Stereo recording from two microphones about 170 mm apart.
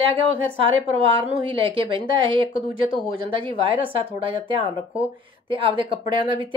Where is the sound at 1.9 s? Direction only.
30° right (ahead or behind).